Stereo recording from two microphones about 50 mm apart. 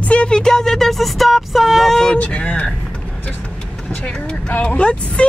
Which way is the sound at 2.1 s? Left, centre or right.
Left.